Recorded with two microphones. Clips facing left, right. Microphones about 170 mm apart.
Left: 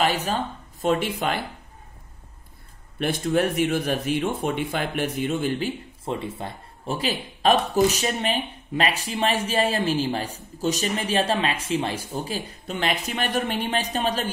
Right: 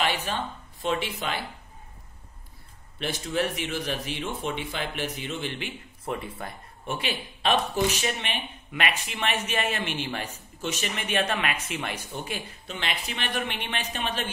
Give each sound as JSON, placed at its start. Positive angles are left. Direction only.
{"t": 0.0, "sound": "speech", "side_deg": 40}
{"t": 3.0, "sound": "speech", "side_deg": 50}
{"t": 6.0, "sound": "speech", "side_deg": 25}
{"t": 7.0, "sound": "a man's voice", "side_deg": 40}